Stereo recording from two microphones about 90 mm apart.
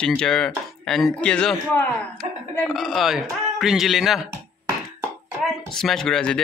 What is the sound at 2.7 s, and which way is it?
Speech, centre (ahead or behind).